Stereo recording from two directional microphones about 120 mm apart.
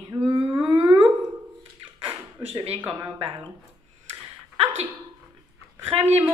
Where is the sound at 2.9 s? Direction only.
30° right (ahead or behind).